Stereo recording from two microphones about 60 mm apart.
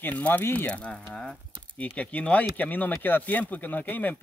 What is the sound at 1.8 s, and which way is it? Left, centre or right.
Speech, left.